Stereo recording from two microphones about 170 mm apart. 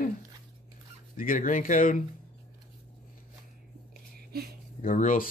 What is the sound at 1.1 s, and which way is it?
Speech, 50° left (ahead or behind).